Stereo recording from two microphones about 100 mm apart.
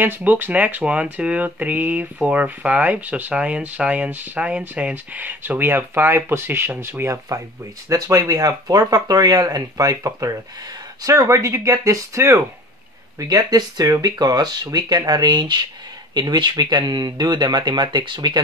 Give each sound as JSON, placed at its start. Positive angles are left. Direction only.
{"t": 0.0, "sound": "speech", "side_deg": -20}
{"t": 7.1, "sound": "speech", "side_deg": -35}
{"t": 13.2, "sound": "speech", "side_deg": -40}